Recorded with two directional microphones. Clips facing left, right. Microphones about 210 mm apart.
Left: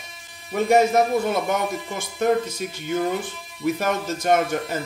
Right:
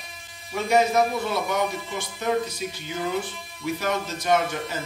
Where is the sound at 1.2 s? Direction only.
50° left (ahead or behind).